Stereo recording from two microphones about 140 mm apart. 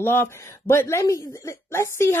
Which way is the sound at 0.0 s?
15° left (ahead or behind).